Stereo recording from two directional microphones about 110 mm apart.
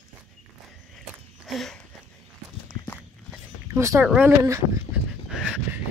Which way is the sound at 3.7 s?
25° right (ahead or behind).